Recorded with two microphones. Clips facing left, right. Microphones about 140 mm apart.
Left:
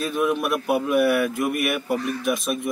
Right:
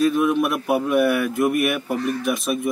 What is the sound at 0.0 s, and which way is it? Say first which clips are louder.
A man's voice: right 5 dB; centre (ahead or behind).